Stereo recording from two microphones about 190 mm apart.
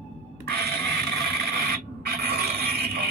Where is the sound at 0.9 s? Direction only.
55° right (ahead or behind).